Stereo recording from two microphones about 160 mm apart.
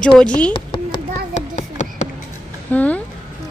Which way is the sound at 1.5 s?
50° left (ahead or behind).